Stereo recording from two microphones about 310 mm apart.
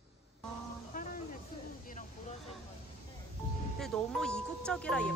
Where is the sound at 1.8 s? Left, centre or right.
Left.